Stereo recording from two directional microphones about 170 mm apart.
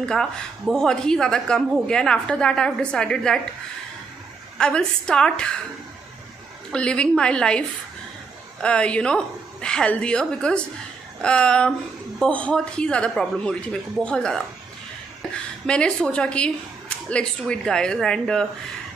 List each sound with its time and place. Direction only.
0.1 s a woman's voice: 5° left (ahead or behind)
4.6 s a woman's voice: 5° left (ahead or behind)
6.7 s a woman's voice: 5° left (ahead or behind)